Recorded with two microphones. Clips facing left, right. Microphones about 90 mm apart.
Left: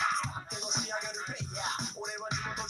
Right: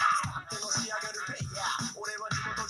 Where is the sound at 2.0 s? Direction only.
40° right (ahead or behind).